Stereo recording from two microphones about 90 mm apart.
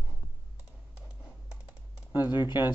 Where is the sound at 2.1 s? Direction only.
25° right (ahead or behind).